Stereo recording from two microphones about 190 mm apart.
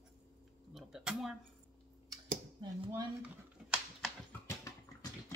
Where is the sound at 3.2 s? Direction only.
5° right (ahead or behind).